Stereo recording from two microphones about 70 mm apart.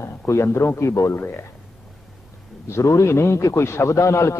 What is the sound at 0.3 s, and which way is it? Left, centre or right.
Speech, left.